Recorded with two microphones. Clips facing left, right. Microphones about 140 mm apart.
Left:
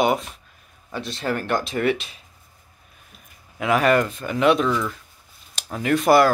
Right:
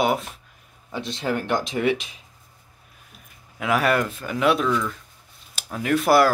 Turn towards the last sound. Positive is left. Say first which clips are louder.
# left 2 dB
turn(degrees=-5)  # may be behind; listen again after turning